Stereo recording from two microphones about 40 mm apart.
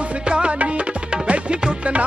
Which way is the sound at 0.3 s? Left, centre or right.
Right.